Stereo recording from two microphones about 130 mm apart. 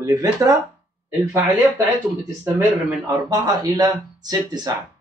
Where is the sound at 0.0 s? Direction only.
25° right (ahead or behind).